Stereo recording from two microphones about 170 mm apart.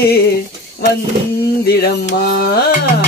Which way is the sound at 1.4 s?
65° left (ahead or behind).